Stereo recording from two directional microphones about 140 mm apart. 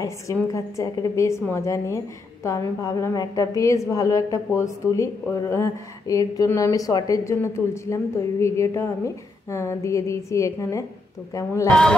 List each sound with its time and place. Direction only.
0.0 s a woman's voice: 20° left (ahead or behind)